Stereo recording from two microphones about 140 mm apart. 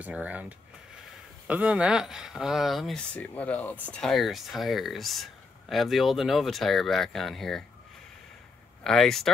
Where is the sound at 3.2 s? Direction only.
10° left (ahead or behind).